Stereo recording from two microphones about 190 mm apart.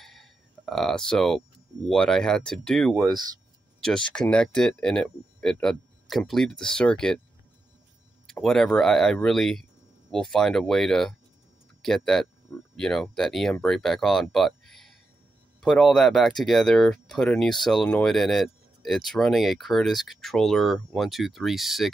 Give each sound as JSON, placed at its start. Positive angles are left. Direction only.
{"t": 0.0, "sound": "a sound", "side_deg": 0}
{"t": 1.9, "sound": "speech", "side_deg": 5}
{"t": 3.0, "sound": "speech", "side_deg": -20}
{"t": 3.8, "sound": "speech", "side_deg": 5}
{"t": 8.3, "sound": "speech", "side_deg": 0}